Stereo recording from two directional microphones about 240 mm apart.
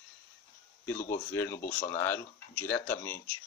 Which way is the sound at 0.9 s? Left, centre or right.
Left.